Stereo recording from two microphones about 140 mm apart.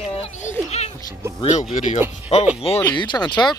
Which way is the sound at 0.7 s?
50° left (ahead or behind).